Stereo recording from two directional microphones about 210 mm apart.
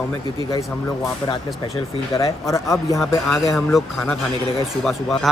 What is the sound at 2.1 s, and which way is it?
Speech, 15° left (ahead or behind).